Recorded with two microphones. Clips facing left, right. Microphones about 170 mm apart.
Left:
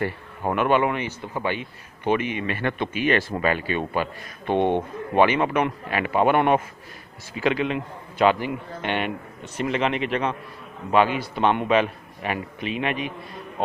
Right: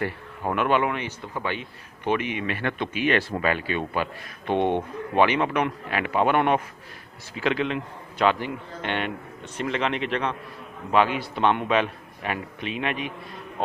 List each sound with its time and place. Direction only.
0.4 s speech: 5° left (ahead or behind)